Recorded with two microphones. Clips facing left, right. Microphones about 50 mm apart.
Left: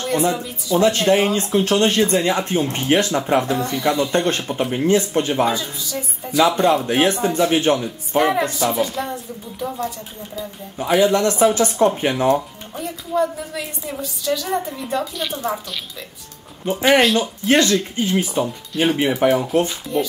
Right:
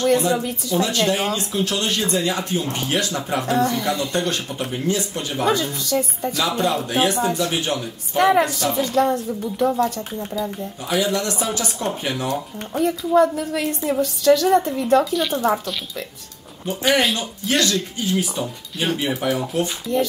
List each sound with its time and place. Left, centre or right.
0.0 s speech: left
5.5 s a woman's voice: right
6.3 s speech: left
8.5 s speech: centre
8.9 s a woman's voice: right
10.8 s speech: left
12.7 s a woman's voice: right
15.1 s speech: centre
16.6 s speech: left